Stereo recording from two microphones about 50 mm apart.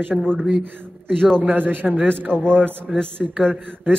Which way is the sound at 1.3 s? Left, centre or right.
Right.